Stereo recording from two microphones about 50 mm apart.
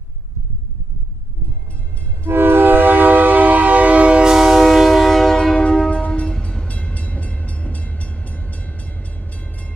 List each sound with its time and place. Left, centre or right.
2.2 s train: right
4.2 s train: centre
5.9 s music: left
6.4 s train: left